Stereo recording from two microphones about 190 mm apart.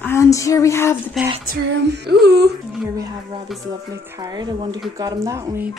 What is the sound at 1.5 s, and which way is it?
Female singing, 60° right (ahead or behind).